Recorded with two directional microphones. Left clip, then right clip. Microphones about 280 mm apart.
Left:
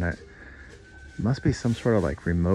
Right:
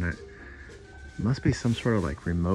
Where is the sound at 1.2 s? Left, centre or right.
Centre.